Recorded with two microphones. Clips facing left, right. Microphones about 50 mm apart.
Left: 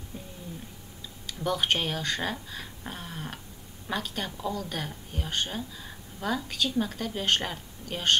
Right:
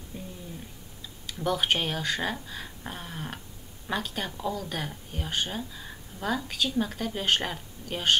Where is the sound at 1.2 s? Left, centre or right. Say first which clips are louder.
Right 1 dB; centre.